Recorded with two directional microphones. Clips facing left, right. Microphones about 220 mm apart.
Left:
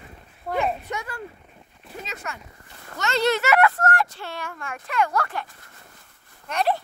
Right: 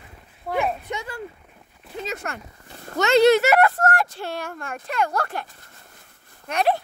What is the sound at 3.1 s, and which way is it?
Speech, 15° right (ahead or behind).